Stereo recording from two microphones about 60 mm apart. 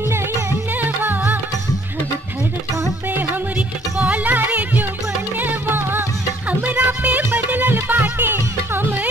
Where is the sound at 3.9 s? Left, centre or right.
Right.